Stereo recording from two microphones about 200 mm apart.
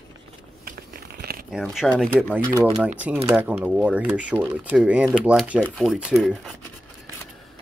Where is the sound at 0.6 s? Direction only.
50° right (ahead or behind).